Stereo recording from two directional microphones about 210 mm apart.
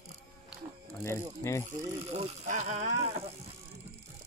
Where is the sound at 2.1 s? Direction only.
35° right (ahead or behind).